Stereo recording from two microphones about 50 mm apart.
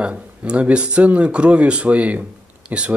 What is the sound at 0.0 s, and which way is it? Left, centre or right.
Speech, right.